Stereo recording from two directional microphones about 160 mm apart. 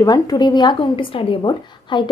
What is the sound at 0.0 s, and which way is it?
A woman's voice, 25° left (ahead or behind).